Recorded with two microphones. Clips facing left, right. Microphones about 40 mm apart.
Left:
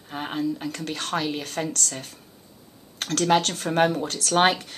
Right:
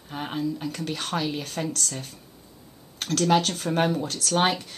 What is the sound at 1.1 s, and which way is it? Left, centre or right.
Speech, centre.